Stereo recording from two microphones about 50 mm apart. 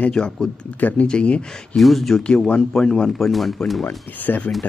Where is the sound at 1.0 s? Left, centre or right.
Left.